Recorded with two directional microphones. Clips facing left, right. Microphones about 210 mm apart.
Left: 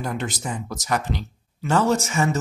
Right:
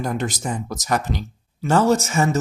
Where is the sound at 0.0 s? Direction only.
45° right (ahead or behind).